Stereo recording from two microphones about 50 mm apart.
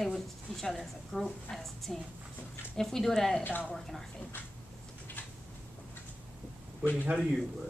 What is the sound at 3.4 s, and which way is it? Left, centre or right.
Speech, left.